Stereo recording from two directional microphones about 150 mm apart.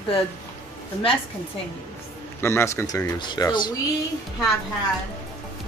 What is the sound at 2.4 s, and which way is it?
A man's voice, 20° left (ahead or behind).